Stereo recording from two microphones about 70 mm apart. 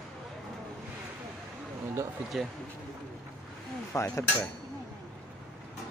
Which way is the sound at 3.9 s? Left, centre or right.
Left.